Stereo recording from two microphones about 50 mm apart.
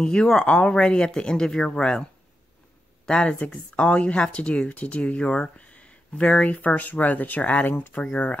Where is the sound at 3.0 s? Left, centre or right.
Left.